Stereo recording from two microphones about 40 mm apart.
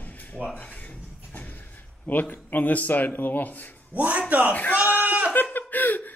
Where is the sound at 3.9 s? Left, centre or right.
Right.